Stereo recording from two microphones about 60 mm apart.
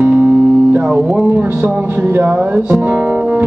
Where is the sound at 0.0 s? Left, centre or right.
Right.